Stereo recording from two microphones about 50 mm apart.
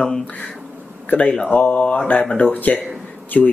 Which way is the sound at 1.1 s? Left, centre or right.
Left.